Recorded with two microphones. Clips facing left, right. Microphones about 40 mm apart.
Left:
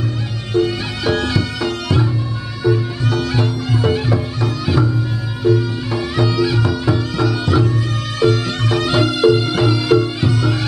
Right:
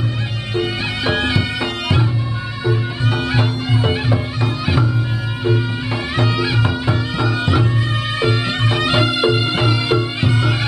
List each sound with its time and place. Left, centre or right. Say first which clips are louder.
0.6 s music: left 3 dB; right